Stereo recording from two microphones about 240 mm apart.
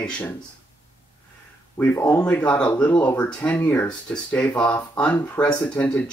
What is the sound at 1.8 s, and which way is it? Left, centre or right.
Speech, centre.